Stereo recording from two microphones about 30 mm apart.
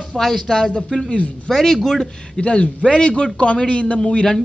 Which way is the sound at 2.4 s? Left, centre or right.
Left.